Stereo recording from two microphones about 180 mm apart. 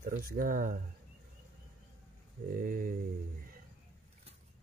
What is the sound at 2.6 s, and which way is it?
Speech, 55° right (ahead or behind).